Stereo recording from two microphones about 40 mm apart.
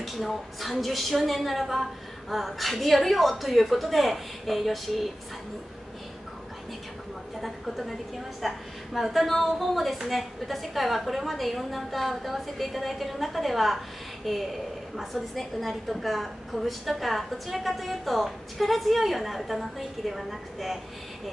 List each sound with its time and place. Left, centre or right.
0.0 s a woman's voice: centre
7.4 s a woman's voice: centre